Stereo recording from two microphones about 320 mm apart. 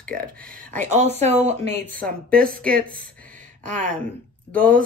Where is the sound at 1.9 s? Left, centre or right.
Right.